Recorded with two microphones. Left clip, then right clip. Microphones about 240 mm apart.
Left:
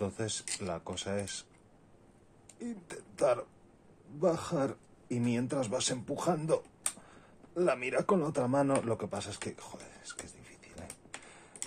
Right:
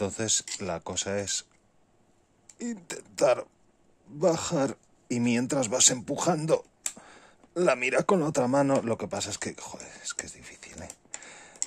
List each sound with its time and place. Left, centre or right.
0.0 s speech: right
2.6 s speech: right
11.2 s computer keyboard: right